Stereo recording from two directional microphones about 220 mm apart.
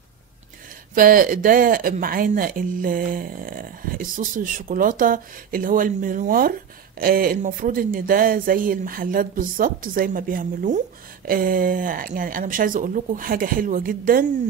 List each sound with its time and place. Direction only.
0.9 s speech: 40° right (ahead or behind)